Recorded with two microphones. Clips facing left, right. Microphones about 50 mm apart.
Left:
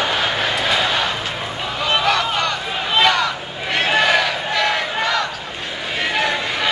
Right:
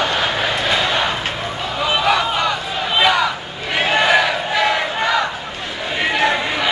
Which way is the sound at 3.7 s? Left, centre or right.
Centre.